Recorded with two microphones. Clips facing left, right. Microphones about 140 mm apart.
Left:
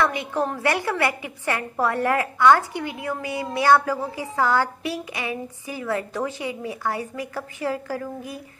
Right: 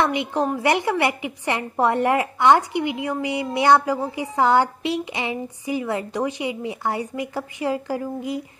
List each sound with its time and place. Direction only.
0.0 s a woman's voice: 20° right (ahead or behind)